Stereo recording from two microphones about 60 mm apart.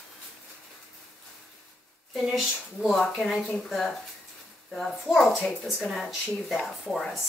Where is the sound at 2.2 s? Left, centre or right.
Centre.